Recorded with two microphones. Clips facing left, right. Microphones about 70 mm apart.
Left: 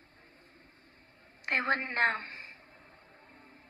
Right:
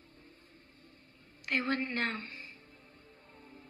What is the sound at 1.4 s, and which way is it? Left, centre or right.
A woman's voice, left.